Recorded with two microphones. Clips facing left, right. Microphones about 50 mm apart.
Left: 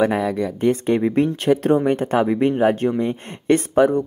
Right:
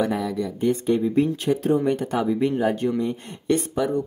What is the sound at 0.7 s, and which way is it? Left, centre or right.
Speech, left.